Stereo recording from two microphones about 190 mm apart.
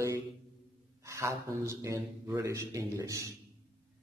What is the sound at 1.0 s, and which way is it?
A man's voice, 15° right (ahead or behind).